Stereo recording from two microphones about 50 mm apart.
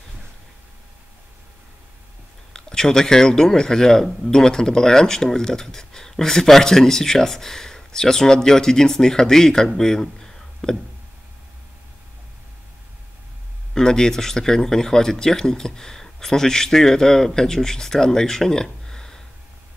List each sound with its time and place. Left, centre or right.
2.5 s speech: centre
13.7 s speech: centre